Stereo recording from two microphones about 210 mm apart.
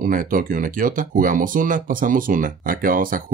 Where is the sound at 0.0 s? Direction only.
40° right (ahead or behind).